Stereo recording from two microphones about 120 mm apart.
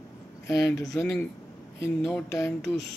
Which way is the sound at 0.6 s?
25° left (ahead or behind).